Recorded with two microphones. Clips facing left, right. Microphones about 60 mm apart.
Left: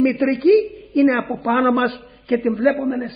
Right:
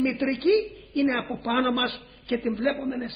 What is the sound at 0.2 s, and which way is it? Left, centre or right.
Speech, left.